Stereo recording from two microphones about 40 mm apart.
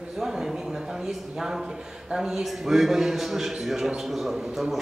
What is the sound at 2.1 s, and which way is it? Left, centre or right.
A man's voice, centre.